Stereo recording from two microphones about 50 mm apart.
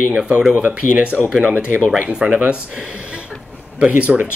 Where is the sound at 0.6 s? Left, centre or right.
Right.